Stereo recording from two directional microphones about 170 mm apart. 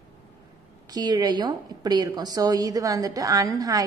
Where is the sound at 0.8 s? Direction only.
20° right (ahead or behind).